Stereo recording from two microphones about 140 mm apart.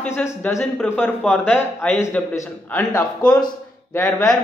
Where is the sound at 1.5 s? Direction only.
10° left (ahead or behind).